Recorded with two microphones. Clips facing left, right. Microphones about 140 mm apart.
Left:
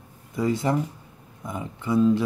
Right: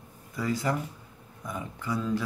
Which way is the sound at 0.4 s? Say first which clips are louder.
Left 6 dB; 25° left (ahead or behind).